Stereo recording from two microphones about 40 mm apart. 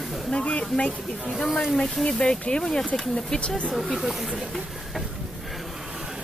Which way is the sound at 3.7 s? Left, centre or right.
Centre.